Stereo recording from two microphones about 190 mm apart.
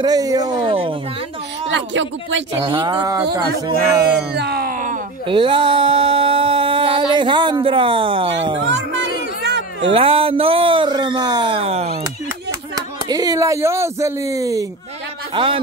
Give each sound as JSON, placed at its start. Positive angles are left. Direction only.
{"t": 0.0, "sound": "speech", "side_deg": -20}
{"t": 1.7, "sound": "speech", "side_deg": -75}
{"t": 2.6, "sound": "speech", "side_deg": -25}
{"t": 4.3, "sound": "a sound", "side_deg": -60}
{"t": 5.2, "sound": "speech", "side_deg": -25}
{"t": 8.6, "sound": "music", "side_deg": -70}
{"t": 9.5, "sound": "a sound", "side_deg": -65}
{"t": 9.8, "sound": "speech", "side_deg": -30}
{"t": 12.7, "sound": "speech", "side_deg": -20}
{"t": 15.3, "sound": "speech", "side_deg": -25}